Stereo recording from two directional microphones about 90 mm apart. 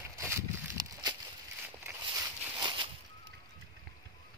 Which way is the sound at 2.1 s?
55° right (ahead or behind).